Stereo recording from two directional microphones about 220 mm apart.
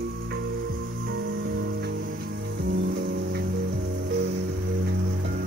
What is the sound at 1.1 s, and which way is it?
Music, 55° right (ahead or behind).